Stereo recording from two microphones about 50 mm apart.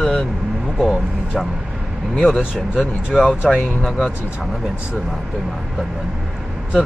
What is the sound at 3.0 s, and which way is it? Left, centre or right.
Speech, centre.